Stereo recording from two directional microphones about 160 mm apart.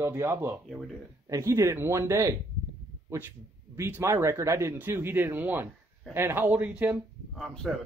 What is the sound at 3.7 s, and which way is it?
Speech, 15° right (ahead or behind).